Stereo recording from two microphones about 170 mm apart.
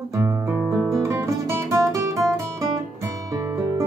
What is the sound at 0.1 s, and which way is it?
Guitar, 15° right (ahead or behind).